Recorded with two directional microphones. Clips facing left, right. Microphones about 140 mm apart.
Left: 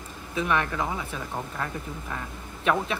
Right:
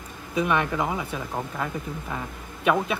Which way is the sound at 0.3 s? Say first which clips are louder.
Right 3 dB; 15° right (ahead or behind).